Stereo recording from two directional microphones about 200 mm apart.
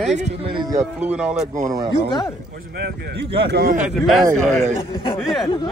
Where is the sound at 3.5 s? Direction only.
55° right (ahead or behind).